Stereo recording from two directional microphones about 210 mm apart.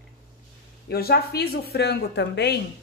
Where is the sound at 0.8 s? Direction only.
50° left (ahead or behind).